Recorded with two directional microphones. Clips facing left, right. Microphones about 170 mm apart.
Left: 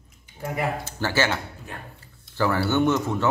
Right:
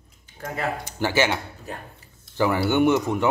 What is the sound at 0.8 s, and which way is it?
Speech, 15° right (ahead or behind).